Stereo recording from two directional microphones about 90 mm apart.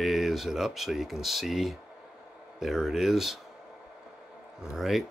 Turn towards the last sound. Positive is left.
turn(degrees=0)  # may be behind; listen again after turning